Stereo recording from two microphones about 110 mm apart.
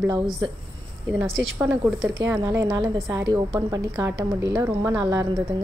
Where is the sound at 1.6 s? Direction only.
10° right (ahead or behind).